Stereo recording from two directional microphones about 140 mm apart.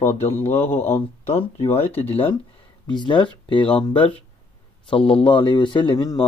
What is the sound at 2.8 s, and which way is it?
Speech, 35° left (ahead or behind).